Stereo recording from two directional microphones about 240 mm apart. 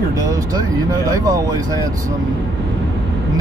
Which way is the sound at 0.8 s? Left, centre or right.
Centre.